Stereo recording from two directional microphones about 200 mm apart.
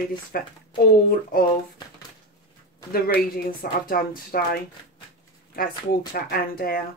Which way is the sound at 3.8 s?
45° left (ahead or behind).